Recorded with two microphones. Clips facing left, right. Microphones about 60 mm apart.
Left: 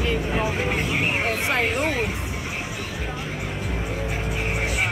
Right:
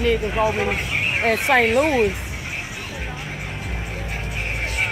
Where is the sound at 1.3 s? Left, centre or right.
Right.